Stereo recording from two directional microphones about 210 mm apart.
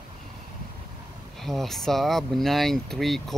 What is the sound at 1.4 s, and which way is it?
Speech, centre (ahead or behind).